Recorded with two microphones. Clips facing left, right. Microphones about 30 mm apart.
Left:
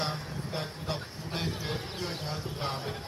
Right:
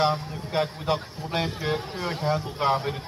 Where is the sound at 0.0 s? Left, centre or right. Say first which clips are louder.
Right 10 dB; right.